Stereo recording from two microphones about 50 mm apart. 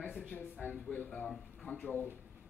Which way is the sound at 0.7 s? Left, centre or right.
Left.